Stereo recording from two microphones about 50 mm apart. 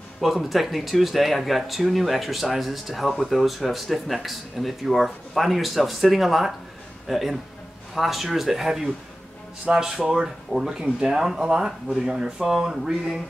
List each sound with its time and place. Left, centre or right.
0.2 s speech: centre
12.5 s speech: centre
12.8 s speech: centre